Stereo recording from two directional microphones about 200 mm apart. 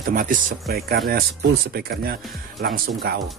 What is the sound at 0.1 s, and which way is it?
Speech, 45° right (ahead or behind).